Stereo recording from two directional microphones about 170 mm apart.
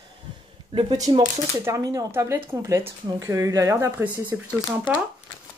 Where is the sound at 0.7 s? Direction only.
35° right (ahead or behind).